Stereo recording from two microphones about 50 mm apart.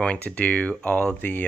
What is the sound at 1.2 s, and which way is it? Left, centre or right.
Speech, left.